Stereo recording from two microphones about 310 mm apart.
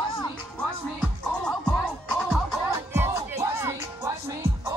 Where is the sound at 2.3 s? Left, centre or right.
Centre.